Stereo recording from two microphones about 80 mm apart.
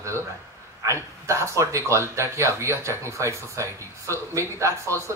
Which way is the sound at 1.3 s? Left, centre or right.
Right.